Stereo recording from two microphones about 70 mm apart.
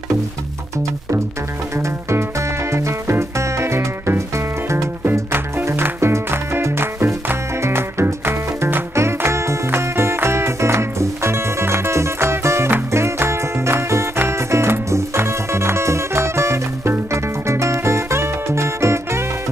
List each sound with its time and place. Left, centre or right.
1.8 s music: right